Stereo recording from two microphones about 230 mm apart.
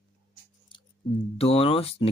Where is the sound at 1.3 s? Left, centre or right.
Left.